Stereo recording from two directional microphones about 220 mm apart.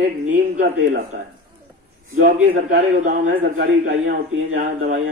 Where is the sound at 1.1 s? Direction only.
50° right (ahead or behind).